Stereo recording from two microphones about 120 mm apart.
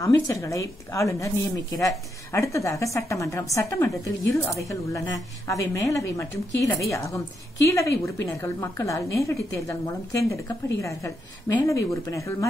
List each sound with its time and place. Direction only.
0.0 s a woman's voice: 25° left (ahead or behind)